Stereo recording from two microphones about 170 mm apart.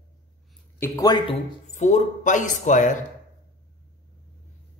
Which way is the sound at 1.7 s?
45° left (ahead or behind).